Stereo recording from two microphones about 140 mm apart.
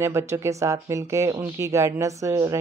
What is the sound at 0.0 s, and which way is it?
A woman's voice, 20° right (ahead or behind).